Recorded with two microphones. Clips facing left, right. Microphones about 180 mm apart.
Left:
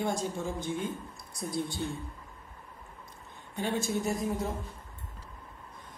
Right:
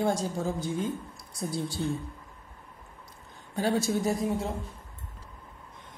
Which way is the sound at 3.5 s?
35° right (ahead or behind).